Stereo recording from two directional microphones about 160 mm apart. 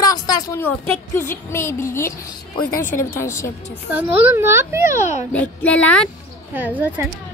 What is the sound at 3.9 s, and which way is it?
Speech, 10° right (ahead or behind).